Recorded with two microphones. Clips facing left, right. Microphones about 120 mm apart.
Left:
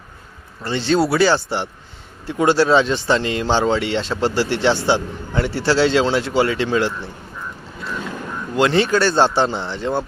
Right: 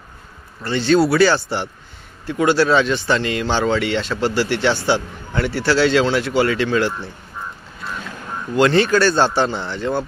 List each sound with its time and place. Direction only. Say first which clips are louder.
0.7 s speech: right 2 dB; 20° left (ahead or behind)
8.5 s speech: right 2 dB; 20° left (ahead or behind)